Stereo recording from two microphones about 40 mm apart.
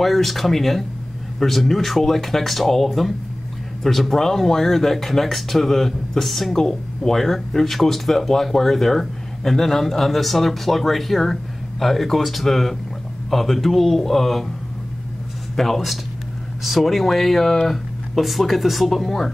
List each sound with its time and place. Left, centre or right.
0.0 s speech: centre
15.5 s speech: centre